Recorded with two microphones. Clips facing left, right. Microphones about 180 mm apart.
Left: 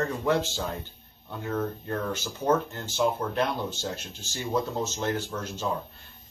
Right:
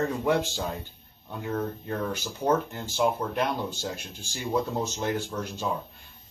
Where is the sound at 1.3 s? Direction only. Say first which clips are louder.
Even; 5° right (ahead or behind).